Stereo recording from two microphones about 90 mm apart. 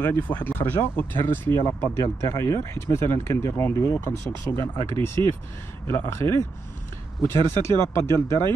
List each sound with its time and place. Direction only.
0.0 s speech: 20° left (ahead or behind)